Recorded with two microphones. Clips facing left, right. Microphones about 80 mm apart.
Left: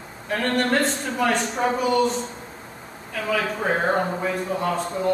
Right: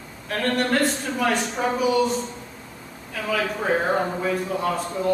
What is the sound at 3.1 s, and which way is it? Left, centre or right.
A man's voice, centre.